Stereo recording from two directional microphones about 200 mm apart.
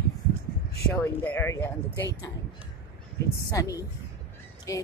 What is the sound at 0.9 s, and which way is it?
Speech, 10° left (ahead or behind).